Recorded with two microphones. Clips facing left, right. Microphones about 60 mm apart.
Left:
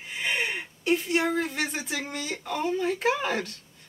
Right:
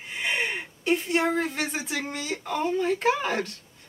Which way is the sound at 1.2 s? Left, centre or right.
Centre.